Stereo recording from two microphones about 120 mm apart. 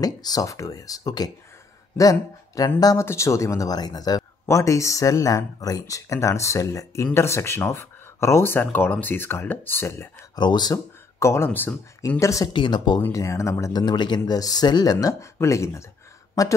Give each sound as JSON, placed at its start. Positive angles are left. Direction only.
{"t": 0.0, "sound": "a man's voice", "side_deg": 30}
{"t": 10.3, "sound": "speech", "side_deg": 35}
{"t": 12.5, "sound": "speech", "side_deg": 40}
{"t": 13.1, "sound": "a man's voice", "side_deg": 25}
{"t": 13.8, "sound": "speech", "side_deg": 40}